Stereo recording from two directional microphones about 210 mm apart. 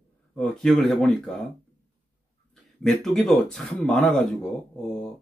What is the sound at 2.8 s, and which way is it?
Speech, centre (ahead or behind).